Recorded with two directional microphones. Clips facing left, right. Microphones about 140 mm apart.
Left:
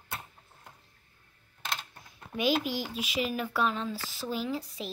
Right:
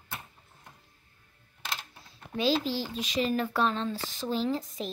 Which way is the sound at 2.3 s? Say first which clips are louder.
Right 1 dB; 15° left (ahead or behind).